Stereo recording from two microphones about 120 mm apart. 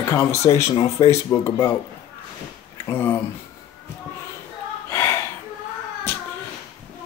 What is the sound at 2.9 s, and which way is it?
Speech, 20° left (ahead or behind).